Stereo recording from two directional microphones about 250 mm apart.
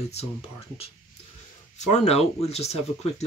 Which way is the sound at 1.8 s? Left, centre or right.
Left.